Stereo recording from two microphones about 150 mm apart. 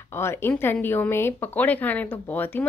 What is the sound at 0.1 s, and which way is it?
Speech, 15° left (ahead or behind).